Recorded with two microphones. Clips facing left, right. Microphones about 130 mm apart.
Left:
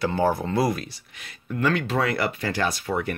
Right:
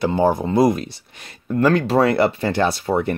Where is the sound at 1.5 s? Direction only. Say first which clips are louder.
Right 7 dB; 35° right (ahead or behind).